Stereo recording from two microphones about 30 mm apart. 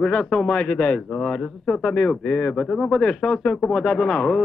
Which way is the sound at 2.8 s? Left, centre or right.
Left.